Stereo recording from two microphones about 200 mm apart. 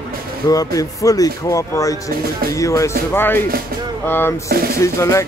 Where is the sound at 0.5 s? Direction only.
15° left (ahead or behind).